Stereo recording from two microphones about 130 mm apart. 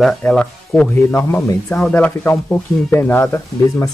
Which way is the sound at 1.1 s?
20° left (ahead or behind).